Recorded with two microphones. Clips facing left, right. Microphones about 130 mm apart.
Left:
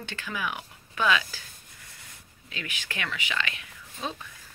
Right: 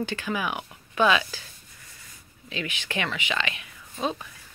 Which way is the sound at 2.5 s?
25° right (ahead or behind).